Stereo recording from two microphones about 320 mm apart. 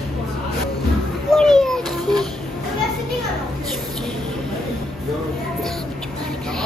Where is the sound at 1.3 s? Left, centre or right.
Centre.